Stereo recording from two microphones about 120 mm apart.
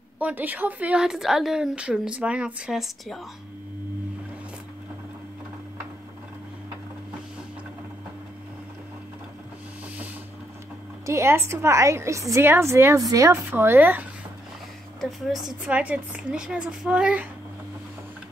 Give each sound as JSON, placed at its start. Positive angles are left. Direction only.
{"t": 0.2, "sound": "a woman's voice", "side_deg": -15}
{"t": 11.1, "sound": "a woman's voice", "side_deg": -25}
{"t": 15.0, "sound": "a woman's voice", "side_deg": 0}